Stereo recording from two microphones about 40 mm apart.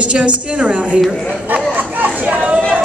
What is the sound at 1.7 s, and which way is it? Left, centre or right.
Chatter, right.